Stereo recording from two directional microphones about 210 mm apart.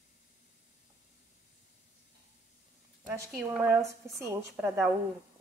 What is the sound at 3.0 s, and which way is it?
Speech, 10° right (ahead or behind).